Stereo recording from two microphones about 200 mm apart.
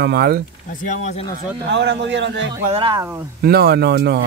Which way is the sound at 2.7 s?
25° right (ahead or behind).